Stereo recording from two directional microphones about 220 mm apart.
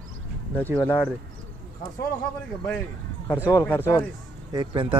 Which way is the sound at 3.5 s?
10° left (ahead or behind).